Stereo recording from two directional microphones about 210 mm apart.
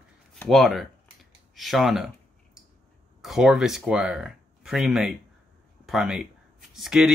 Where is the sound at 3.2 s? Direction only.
Centre (ahead or behind).